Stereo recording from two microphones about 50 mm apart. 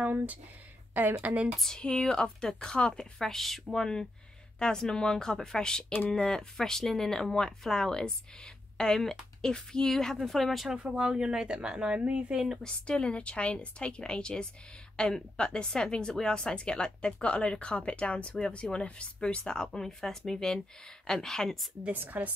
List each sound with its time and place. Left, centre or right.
0.0 s a woman's voice: right
1.8 s a woman's voice: centre
3.2 s a woman's voice: centre
11.0 s speech: centre
12.6 s a woman's voice: centre
21.9 s a woman's voice: right